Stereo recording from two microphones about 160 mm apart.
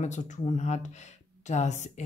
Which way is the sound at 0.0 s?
45° left (ahead or behind).